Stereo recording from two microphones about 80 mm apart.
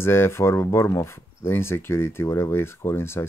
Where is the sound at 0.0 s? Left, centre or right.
Left.